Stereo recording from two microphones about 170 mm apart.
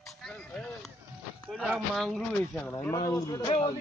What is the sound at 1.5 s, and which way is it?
Speech, centre (ahead or behind).